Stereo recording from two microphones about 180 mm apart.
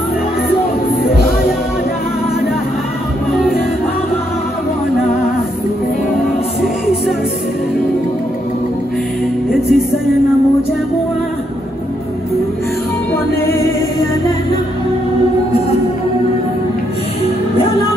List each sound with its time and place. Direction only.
9.5 s music: centre (ahead or behind)